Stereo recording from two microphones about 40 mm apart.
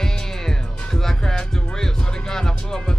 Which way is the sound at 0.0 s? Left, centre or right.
Centre.